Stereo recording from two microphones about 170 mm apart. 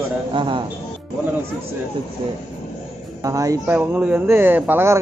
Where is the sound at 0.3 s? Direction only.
30° right (ahead or behind).